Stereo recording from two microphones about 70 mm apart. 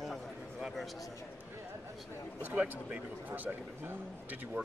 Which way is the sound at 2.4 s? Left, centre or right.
Right.